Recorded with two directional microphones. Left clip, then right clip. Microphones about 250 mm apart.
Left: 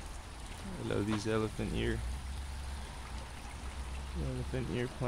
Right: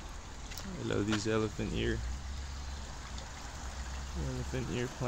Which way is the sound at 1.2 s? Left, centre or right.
Centre.